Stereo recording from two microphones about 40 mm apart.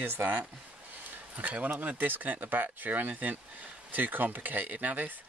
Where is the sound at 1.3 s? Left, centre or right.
Right.